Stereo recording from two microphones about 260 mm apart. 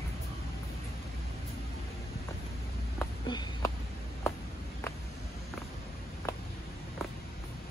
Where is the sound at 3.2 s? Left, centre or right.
Centre.